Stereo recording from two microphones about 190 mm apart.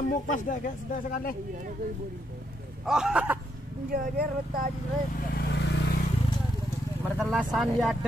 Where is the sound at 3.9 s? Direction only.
50° right (ahead or behind).